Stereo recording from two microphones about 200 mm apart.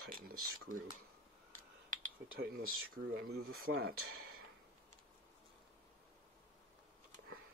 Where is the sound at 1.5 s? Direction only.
40° right (ahead or behind).